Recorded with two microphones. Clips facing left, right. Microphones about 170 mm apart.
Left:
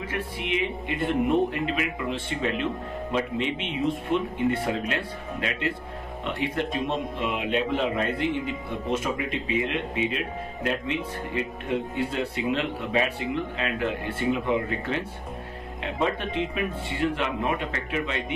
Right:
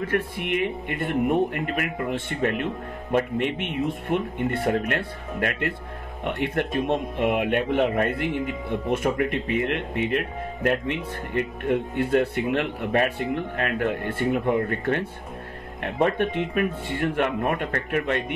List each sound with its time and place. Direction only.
0.1 s a man's voice: 55° right (ahead or behind)